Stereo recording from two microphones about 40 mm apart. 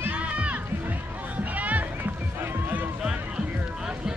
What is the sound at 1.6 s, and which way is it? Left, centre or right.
Music, right.